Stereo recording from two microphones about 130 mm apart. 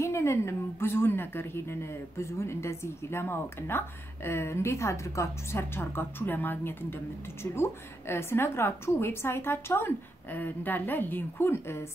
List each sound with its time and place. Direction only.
0.0 s a woman's voice: 20° left (ahead or behind)